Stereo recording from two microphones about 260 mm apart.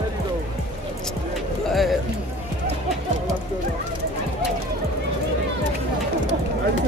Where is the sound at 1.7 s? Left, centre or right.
Centre.